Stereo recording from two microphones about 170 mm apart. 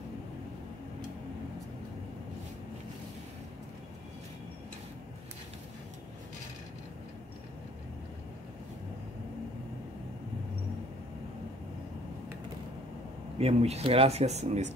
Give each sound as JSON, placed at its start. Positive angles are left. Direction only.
{"t": 13.4, "sound": "speech", "side_deg": -35}